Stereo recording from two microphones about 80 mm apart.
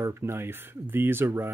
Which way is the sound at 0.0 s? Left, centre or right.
Right.